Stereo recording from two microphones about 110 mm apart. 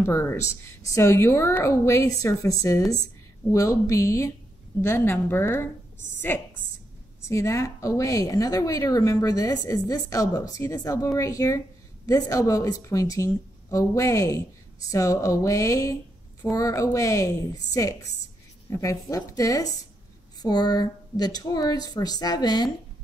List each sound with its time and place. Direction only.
0.0 s a woman's voice: 25° left (ahead or behind)
18.7 s a woman's voice: 30° left (ahead or behind)